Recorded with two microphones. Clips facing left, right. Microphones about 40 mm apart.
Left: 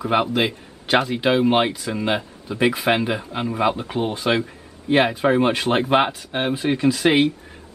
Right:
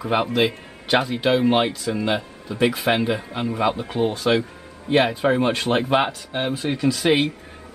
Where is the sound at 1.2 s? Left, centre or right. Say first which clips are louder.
Even; centre.